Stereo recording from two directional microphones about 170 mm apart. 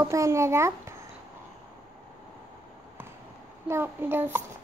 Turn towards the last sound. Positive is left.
turn(degrees=-15)  # may be behind; listen again after turning